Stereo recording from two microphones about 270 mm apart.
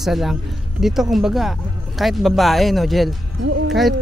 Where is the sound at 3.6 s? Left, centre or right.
Centre.